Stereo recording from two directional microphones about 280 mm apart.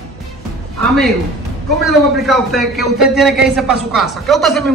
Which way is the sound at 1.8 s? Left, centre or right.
Centre.